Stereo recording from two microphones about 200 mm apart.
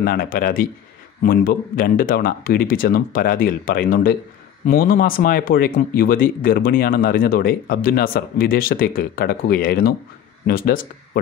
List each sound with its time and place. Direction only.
0.0 s speech: 45° left (ahead or behind)